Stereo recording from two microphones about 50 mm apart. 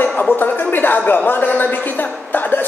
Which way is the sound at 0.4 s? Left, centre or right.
Left.